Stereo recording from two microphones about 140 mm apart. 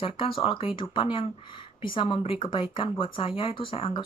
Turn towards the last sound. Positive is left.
turn(degrees=40)  # may be behind; listen again after turning